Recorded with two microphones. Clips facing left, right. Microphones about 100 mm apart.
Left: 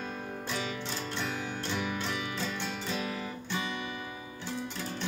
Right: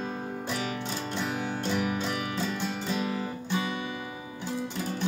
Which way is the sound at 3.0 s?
30° right (ahead or behind).